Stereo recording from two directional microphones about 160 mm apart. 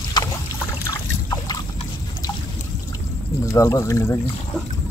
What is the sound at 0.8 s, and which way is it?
Boat, 20° left (ahead or behind).